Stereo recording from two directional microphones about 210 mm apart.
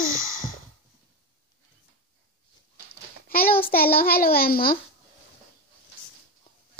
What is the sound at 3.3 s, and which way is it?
Child singing, 45° left (ahead or behind).